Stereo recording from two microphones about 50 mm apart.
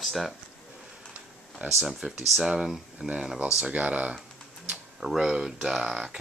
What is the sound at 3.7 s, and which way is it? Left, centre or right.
Speech, right.